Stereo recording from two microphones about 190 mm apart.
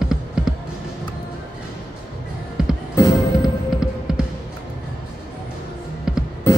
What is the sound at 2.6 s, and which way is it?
Music, 5° right (ahead or behind).